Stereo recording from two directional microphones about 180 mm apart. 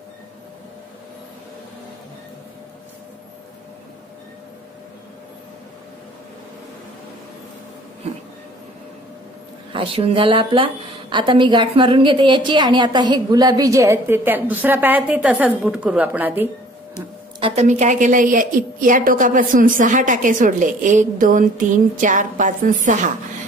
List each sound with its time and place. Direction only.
9.7 s a woman's voice: 30° right (ahead or behind); by 16.4 s 10° right (ahead or behind)
17.4 s a woman's voice: 35° right (ahead or behind)